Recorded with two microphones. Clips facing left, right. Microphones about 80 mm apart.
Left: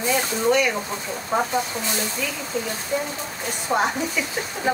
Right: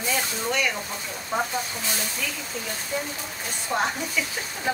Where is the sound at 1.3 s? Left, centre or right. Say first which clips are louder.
Left 4 dB; left.